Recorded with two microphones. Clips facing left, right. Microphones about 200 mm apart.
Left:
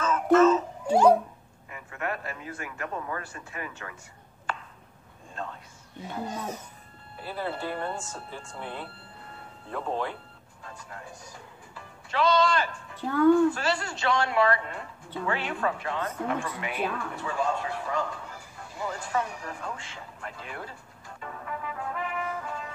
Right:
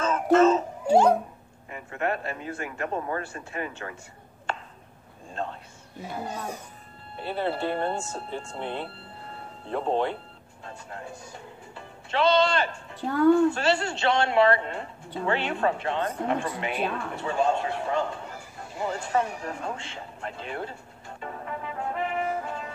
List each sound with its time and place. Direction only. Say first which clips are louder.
0.0 s a sound: even; 30° right (ahead or behind)
1.7 s speech: right 5 dB; 30° right (ahead or behind)
4.5 s chopping: right 2 dB; 25° right (ahead or behind)
5.3 s a man's voice: right 5 dB; 30° right (ahead or behind)
6.0 s speech: even; 10° right (ahead or behind)
7.2 s speech: right 5 dB; 25° right (ahead or behind)
10.6 s music: right 4 dB; 25° right (ahead or behind)
13.3 s speech: right 2 dB; 25° right (ahead or behind)
21.2 s music: right 2 dB; 30° right (ahead or behind)